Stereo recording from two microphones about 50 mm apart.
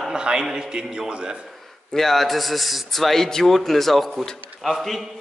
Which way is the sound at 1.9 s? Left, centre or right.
Centre.